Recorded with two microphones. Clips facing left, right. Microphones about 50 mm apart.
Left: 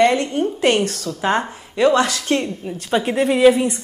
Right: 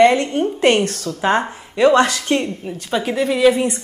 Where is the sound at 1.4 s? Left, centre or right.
Centre.